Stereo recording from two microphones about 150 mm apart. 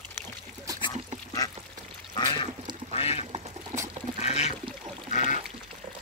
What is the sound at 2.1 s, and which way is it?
Duck, 30° left (ahead or behind).